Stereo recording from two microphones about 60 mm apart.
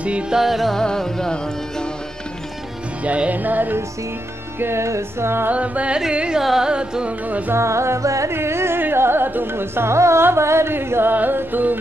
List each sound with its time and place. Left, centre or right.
0.0 s music: centre
0.4 s music: centre
0.7 s music: centre
3.0 s music: right
4.6 s music: right
5.5 s music: right
5.9 s carnatic music: centre
6.4 s music: centre
6.7 s carnatic music: centre
7.2 s music: right
7.5 s music: right
8.3 s music: right